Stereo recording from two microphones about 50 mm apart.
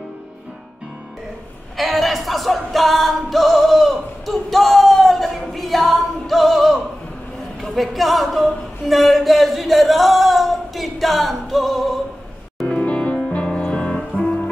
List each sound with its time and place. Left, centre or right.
1.8 s music: centre
7.6 s a sound: centre
12.6 s music: centre